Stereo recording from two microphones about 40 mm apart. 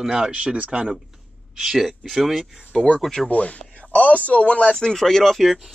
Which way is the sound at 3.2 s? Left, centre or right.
Left.